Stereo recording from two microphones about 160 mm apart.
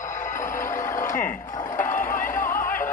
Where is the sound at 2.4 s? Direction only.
60° left (ahead or behind).